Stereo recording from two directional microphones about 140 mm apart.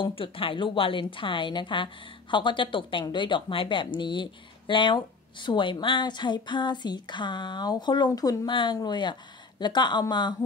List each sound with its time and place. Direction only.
0.0 s speech: 40° left (ahead or behind)